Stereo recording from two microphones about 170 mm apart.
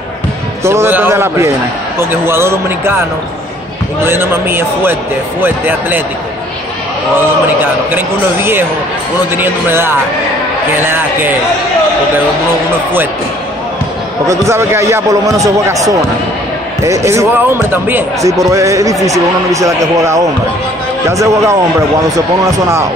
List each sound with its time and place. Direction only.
0.7 s a man's voice: 15° right (ahead or behind)
4.0 s a man's voice: 15° right (ahead or behind)
7.9 s a man's voice: 15° right (ahead or behind)
14.2 s a man's voice: 15° right (ahead or behind)